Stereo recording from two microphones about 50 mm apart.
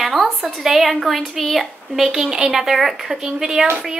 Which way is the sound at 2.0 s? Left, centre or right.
Centre.